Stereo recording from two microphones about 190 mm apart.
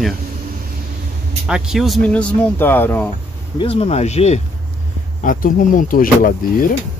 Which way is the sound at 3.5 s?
30° left (ahead or behind).